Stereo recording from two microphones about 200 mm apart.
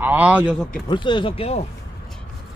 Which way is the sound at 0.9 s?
25° left (ahead or behind).